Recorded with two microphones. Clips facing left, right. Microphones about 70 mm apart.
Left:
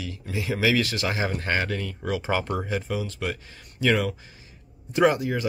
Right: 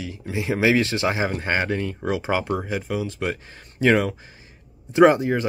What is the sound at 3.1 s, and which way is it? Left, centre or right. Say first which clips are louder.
Speech: right 4 dB; right.